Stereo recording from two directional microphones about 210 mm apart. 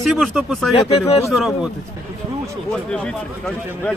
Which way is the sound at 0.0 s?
Centre (ahead or behind).